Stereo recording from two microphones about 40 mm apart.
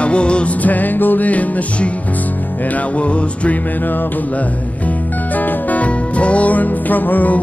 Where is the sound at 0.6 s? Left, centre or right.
Left.